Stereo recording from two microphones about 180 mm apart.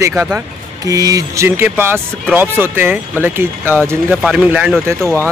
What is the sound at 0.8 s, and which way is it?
Speech, 20° right (ahead or behind).